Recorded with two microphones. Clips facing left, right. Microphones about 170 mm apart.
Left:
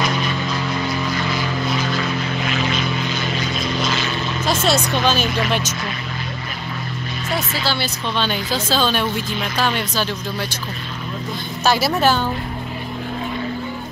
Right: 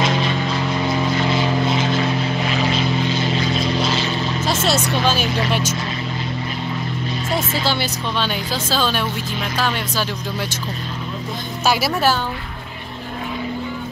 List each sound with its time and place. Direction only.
0.0 s vehicle: 25° right (ahead or behind)
4.5 s vehicle: 5° right (ahead or behind)
5.5 s speech: 10° right (ahead or behind)
7.3 s speech: 20° right (ahead or behind)
8.2 s speech: 5° right (ahead or behind)
11.6 s speech: 10° right (ahead or behind)